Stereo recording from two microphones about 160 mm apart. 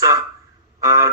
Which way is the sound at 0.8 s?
20° right (ahead or behind).